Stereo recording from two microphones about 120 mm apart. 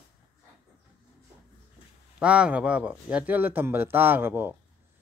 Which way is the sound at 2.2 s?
10° right (ahead or behind).